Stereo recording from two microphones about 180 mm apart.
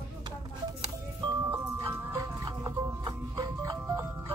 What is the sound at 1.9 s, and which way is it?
Music, 20° right (ahead or behind).